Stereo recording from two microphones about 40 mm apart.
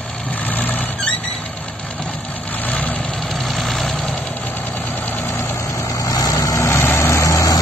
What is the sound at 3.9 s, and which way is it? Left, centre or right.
Vehicle, centre.